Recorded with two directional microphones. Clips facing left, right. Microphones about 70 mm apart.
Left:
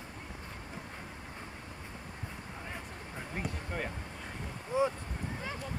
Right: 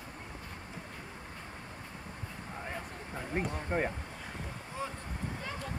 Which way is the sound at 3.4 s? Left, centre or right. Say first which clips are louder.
Right 6 dB; right.